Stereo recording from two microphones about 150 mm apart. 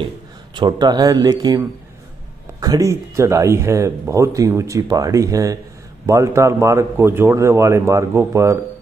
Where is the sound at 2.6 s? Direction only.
25° right (ahead or behind).